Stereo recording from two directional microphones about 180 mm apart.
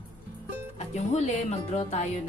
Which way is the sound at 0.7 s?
40° left (ahead or behind).